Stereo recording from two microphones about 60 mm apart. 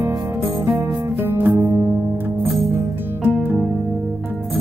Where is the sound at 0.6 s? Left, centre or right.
Right.